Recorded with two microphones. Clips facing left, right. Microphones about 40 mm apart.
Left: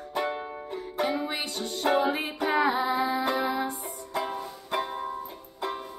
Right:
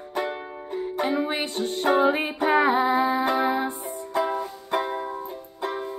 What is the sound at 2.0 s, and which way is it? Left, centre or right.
Music, right.